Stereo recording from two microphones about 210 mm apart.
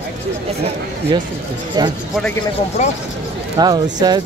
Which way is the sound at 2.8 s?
35° left (ahead or behind).